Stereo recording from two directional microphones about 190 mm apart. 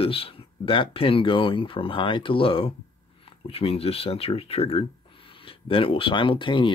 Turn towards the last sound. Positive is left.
turn(degrees=25)  # may be behind; listen again after turning